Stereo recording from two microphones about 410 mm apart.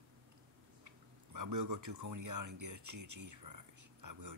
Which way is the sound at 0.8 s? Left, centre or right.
Right.